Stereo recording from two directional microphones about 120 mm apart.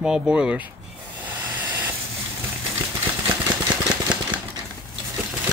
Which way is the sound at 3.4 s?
35° right (ahead or behind).